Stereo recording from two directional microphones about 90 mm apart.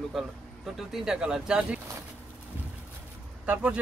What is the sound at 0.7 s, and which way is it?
Speech, 5° right (ahead or behind).